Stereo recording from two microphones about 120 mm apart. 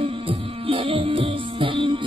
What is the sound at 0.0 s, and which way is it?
Music, 50° right (ahead or behind).